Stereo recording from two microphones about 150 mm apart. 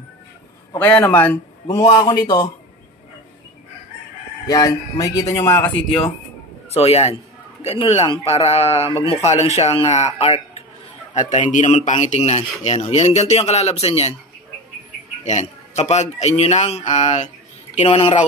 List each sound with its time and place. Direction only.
0.7 s a man's voice: 10° left (ahead or behind)
1.8 s speech: 25° left (ahead or behind)
4.5 s speech: 25° left (ahead or behind)
6.7 s speech: 45° left (ahead or behind)
15.2 s speech: 50° left (ahead or behind)